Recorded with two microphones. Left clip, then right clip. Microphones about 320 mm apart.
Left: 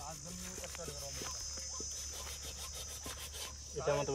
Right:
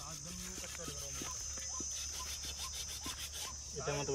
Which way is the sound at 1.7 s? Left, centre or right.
Centre.